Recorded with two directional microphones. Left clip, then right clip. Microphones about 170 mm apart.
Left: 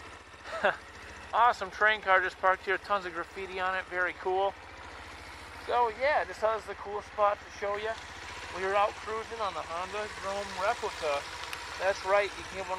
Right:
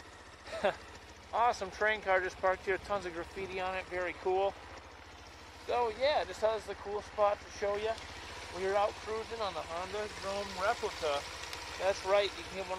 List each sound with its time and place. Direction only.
0.5 s a sound: centre (ahead or behind)
1.3 s speech: 5° right (ahead or behind)
4.2 s speech: 20° left (ahead or behind)
5.7 s speech: centre (ahead or behind)
6.5 s speech: 15° left (ahead or behind)
7.2 s speech: centre (ahead or behind)